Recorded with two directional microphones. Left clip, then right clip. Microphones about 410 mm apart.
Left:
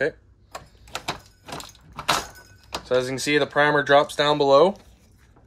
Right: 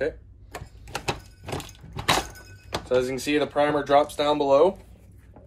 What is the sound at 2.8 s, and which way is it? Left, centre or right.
Speech, left.